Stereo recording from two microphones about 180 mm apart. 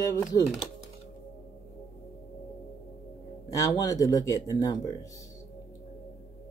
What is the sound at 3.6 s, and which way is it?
Speech, 20° left (ahead or behind).